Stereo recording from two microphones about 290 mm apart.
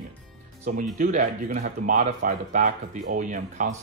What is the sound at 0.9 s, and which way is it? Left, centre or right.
Speech, right.